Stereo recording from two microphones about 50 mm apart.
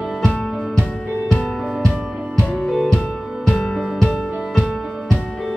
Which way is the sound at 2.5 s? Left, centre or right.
Centre.